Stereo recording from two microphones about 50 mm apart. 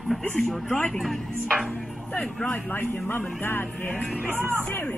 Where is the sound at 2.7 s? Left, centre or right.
Left.